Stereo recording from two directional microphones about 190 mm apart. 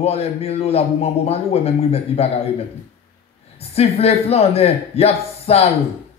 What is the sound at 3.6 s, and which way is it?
A man's voice, 30° left (ahead or behind).